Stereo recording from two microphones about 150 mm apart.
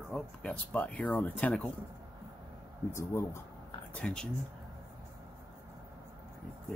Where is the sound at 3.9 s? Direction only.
5° left (ahead or behind).